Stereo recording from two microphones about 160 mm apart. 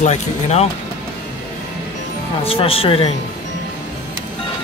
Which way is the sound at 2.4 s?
35° left (ahead or behind).